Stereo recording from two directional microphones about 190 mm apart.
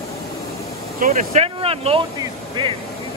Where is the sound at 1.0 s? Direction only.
45° right (ahead or behind).